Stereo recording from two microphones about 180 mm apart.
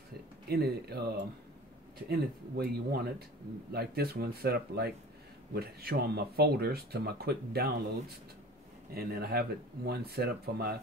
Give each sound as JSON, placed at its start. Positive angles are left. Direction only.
{"t": 0.5, "sound": "speech", "side_deg": -60}
{"t": 8.9, "sound": "speech", "side_deg": -60}